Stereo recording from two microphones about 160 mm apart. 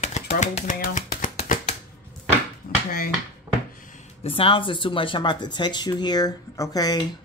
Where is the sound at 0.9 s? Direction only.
55° left (ahead or behind).